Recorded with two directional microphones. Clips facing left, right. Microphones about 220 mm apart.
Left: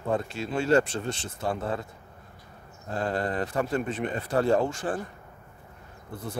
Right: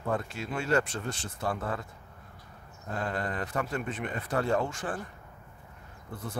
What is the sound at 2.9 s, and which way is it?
Speech, 35° left (ahead or behind).